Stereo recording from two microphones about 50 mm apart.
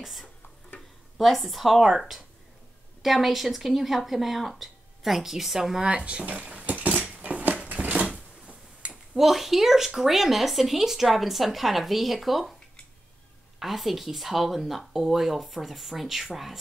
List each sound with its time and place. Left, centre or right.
0.0 s speech: centre
5.9 s speech: right
6.9 s cutlery: right
7.6 s a sound: right
9.1 s speech: centre
13.6 s speech: centre